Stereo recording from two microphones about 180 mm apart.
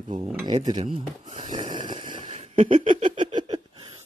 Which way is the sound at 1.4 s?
30° right (ahead or behind).